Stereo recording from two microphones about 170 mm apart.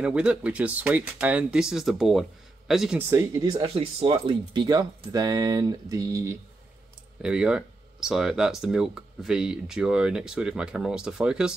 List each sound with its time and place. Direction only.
0.0 s speech: 5° right (ahead or behind)
3.0 s speech: 15° right (ahead or behind)
7.2 s speech: 5° right (ahead or behind)